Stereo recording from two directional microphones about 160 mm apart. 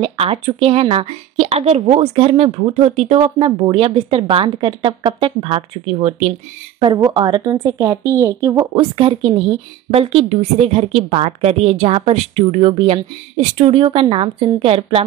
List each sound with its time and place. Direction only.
0.0 s a woman's voice: 35° right (ahead or behind)
6.8 s a woman's voice: 30° right (ahead or behind)
8.7 s a woman's voice: 35° right (ahead or behind)